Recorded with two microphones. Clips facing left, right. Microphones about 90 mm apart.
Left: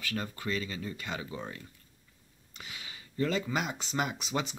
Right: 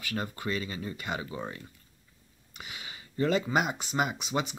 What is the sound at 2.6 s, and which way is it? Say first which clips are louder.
Speech: right 2 dB; 20° right (ahead or behind).